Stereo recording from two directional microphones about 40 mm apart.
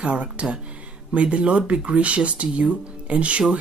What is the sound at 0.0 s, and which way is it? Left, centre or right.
Speech, right.